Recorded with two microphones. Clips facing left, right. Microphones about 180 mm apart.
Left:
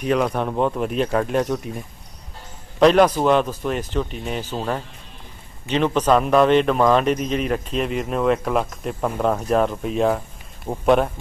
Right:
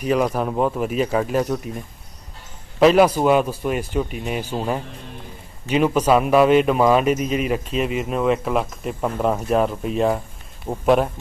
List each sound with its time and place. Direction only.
0.0 s a man's voice: 5° right (ahead or behind)
2.8 s a man's voice: 5° right (ahead or behind)